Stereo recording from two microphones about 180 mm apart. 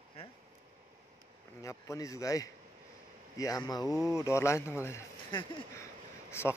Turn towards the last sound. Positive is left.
turn(degrees=15)  # may be behind; listen again after turning